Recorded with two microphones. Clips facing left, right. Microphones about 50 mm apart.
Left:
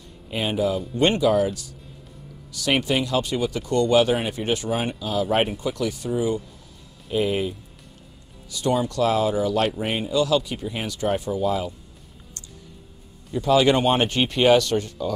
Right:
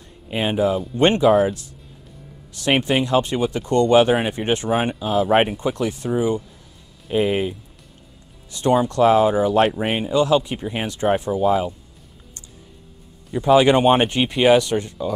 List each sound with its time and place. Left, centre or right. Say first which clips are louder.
0.3 s speech: right 4 dB; right
6.1 s speech: right 4 dB; centre
13.3 s speech: right 4 dB; right